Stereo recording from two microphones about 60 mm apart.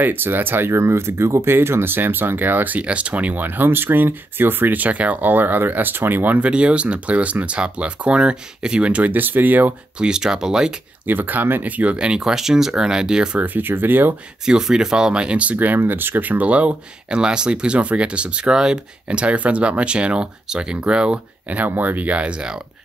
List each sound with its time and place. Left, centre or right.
0.0 s speech: right
9.9 s speech: centre
11.1 s speech: right; by 13.4 s centre
13.4 s speech: right
14.4 s speech: centre